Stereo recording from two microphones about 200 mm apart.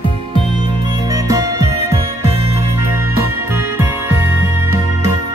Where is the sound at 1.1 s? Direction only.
15° right (ahead or behind).